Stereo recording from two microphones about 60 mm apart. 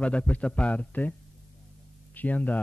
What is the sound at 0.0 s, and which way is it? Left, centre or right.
Speech, centre.